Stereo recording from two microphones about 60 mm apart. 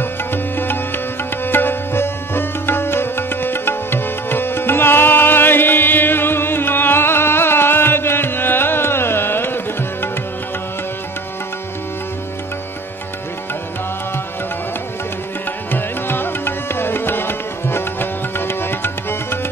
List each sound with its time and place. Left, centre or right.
0.0 s music: left
15.7 s music: left